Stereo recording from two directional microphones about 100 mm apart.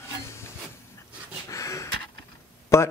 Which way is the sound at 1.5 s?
35° left (ahead or behind).